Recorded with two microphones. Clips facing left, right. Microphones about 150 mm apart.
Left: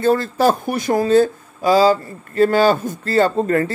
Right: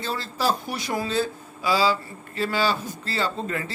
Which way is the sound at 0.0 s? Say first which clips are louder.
Left 11 dB; 50° left (ahead or behind).